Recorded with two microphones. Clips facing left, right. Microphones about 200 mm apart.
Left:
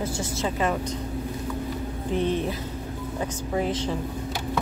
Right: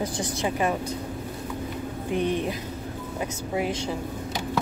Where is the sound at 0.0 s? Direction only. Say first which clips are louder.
Even; 15° right (ahead or behind).